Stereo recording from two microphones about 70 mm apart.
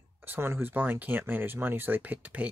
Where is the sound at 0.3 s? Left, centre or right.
Right.